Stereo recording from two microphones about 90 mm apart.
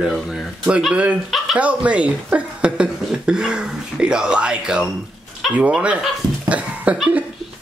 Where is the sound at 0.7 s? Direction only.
10° right (ahead or behind).